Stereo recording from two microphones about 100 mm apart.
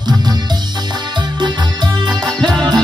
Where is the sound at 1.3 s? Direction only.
45° right (ahead or behind).